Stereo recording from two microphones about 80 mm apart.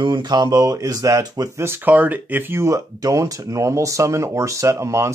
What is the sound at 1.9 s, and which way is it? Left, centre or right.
Speech, right.